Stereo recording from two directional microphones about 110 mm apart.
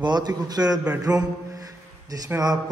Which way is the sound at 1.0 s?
35° right (ahead or behind).